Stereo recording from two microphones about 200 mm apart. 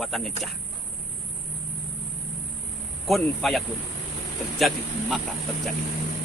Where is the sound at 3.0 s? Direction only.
Centre (ahead or behind).